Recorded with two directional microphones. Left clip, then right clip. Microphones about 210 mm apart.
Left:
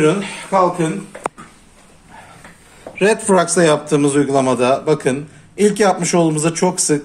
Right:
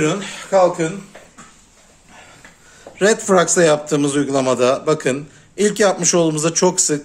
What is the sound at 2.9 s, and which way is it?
A man's voice, 35° right (ahead or behind).